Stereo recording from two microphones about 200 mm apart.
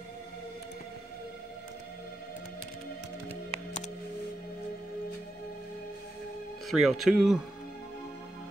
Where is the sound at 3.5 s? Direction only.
35° left (ahead or behind).